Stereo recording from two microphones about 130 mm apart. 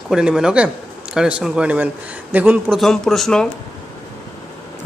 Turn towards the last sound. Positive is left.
turn(degrees=5)  # may be behind; listen again after turning